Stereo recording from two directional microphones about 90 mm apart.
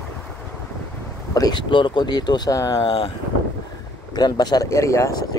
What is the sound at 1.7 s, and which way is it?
Speech, 60° left (ahead or behind).